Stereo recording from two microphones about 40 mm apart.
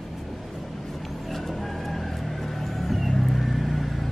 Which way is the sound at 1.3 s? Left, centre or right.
Centre.